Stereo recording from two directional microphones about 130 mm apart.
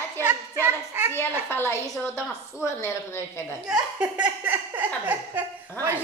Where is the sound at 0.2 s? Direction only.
15° right (ahead or behind).